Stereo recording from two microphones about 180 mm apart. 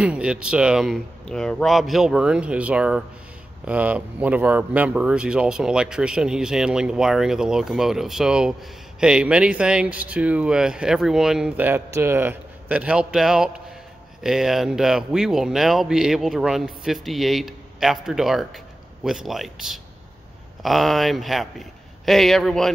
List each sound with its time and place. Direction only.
0.0 s speech: 5° right (ahead or behind)